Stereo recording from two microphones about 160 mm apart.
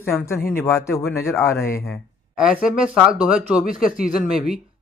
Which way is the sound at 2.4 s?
5° right (ahead or behind).